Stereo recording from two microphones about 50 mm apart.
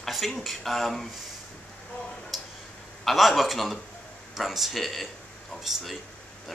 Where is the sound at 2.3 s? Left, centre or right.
Centre.